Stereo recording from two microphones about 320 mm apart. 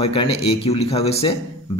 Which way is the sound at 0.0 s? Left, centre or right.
Centre.